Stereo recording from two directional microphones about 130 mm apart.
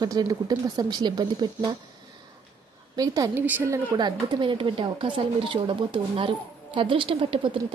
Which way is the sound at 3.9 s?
35° right (ahead or behind).